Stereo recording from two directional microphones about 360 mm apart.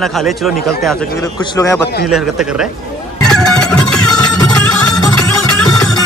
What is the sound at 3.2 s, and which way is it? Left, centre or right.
Music, centre.